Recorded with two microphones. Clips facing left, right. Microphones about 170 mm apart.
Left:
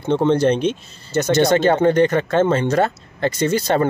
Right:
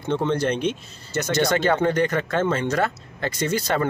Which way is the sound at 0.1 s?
25° left (ahead or behind).